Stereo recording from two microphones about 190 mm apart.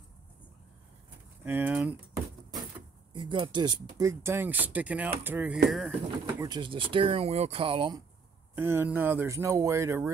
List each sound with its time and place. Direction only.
1.4 s speech: 10° right (ahead or behind)
3.1 s speech: 25° right (ahead or behind); by 5.6 s 10° right (ahead or behind)
5.7 s speech: centre (ahead or behind)
6.4 s speech: 25° right (ahead or behind)
8.5 s speech: 10° right (ahead or behind)